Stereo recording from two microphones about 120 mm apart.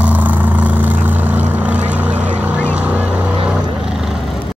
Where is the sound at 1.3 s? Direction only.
15° right (ahead or behind).